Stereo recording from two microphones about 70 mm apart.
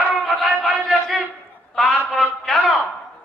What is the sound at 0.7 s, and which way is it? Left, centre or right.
Battle cry, centre.